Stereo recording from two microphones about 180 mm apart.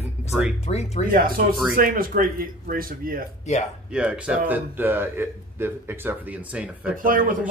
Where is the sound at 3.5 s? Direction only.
40° left (ahead or behind).